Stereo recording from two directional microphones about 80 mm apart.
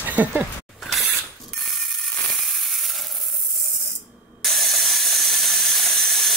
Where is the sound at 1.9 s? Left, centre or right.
Centre.